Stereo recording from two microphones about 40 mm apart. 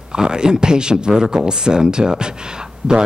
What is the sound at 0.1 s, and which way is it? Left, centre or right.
Speech, centre.